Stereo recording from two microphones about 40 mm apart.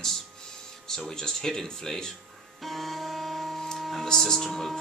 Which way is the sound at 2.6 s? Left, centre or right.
Centre.